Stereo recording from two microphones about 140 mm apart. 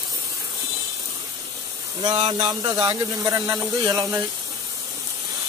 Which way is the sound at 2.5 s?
25° right (ahead or behind).